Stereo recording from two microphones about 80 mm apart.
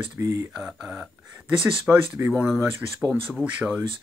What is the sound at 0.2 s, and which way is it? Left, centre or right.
Speech, right.